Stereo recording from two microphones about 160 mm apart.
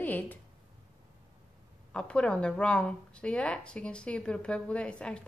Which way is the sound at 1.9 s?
5° left (ahead or behind).